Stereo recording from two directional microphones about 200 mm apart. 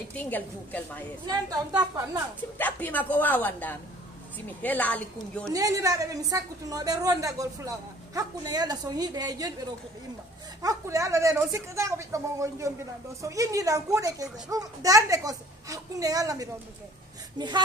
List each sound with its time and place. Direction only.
0.1 s a woman's voice: 10° left (ahead or behind)
1.2 s a woman's voice: 20° right (ahead or behind)
2.5 s a woman's voice: 10° left (ahead or behind)
5.5 s a woman's voice: 15° right (ahead or behind)
10.6 s a woman's voice: 15° right (ahead or behind)